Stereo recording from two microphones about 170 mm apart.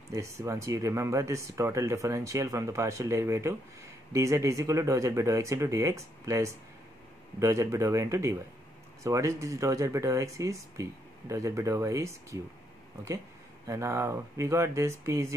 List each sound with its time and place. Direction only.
0.1 s speech: 20° right (ahead or behind)
13.7 s speech: 15° right (ahead or behind)